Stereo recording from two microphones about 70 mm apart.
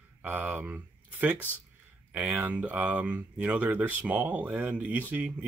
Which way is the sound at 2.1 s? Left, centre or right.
Right.